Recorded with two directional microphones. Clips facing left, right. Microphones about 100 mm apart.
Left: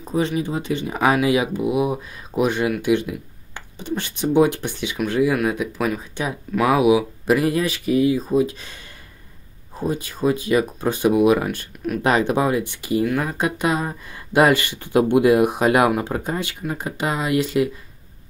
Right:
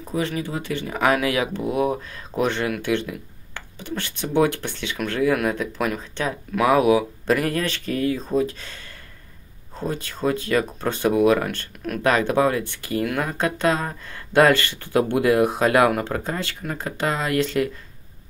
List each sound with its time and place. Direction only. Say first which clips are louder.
0.0 s speech: left 4 dB; 20° left (ahead or behind)
9.8 s speech: left 3 dB; 15° left (ahead or behind)
12.0 s speech: even; 20° left (ahead or behind)